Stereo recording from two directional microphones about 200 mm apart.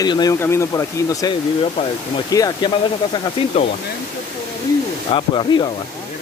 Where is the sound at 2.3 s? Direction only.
20° left (ahead or behind).